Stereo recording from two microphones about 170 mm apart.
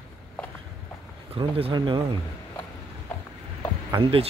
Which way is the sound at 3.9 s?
30° right (ahead or behind).